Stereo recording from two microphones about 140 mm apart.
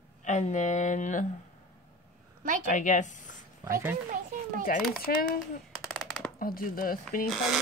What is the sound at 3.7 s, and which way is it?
Speech, 15° right (ahead or behind).